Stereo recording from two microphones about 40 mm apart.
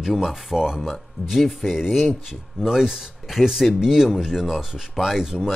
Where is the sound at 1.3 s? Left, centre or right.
Centre.